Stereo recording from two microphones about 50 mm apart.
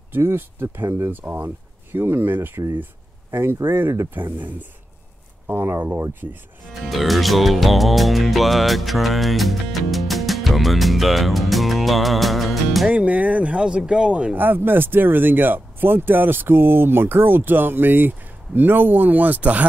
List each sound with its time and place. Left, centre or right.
0.1 s speech: right
1.1 s speech: right
4.1 s speech: right
5.5 s speech: right
6.7 s music: centre
12.9 s speech: right
14.3 s speech: right